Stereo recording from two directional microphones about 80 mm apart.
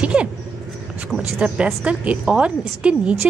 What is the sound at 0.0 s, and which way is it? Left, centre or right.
A woman's voice, centre.